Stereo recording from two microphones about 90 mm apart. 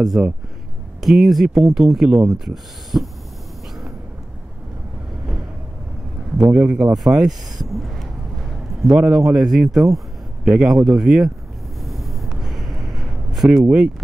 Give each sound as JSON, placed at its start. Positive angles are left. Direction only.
{"t": 0.2, "sound": "speech", "side_deg": -10}
{"t": 6.5, "sound": "speech", "side_deg": -10}
{"t": 8.9, "sound": "speech", "side_deg": -10}
{"t": 11.8, "sound": "a sound", "side_deg": 0}